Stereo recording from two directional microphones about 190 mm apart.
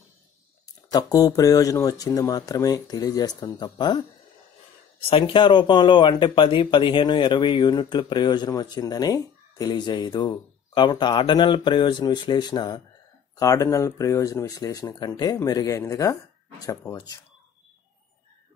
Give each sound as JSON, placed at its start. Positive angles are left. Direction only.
{"t": 0.9, "sound": "speech", "side_deg": 20}
{"t": 5.1, "sound": "speech", "side_deg": 25}